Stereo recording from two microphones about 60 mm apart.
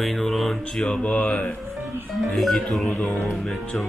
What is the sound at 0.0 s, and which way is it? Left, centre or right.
Mantra, centre.